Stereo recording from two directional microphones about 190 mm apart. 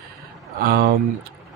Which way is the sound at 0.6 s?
55° right (ahead or behind).